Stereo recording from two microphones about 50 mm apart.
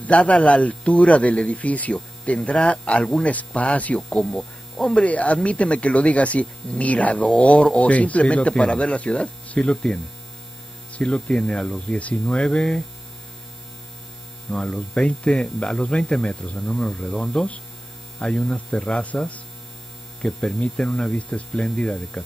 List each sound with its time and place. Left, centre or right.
0.0 s a man's voice: left
4.1 s speech: centre
4.8 s a man's voice: left
12.0 s a man's voice: left
12.4 s speech: centre
14.5 s a man's voice: centre
16.6 s speech: centre
20.2 s a man's voice: centre